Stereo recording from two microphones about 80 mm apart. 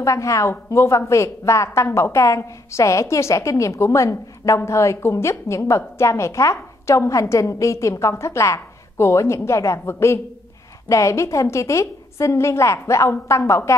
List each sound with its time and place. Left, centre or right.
0.0 s a woman's voice: left